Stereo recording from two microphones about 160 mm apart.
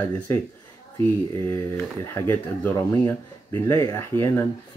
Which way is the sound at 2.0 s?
15° left (ahead or behind).